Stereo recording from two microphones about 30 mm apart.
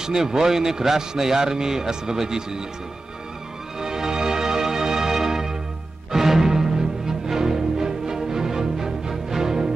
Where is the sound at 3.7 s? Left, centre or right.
Centre.